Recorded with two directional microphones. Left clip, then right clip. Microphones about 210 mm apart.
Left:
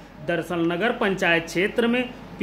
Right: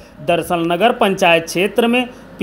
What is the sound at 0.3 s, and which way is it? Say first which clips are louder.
Speech: right 8 dB; 30° right (ahead or behind).